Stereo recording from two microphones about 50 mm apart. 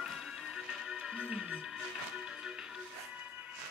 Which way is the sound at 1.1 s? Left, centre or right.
Right.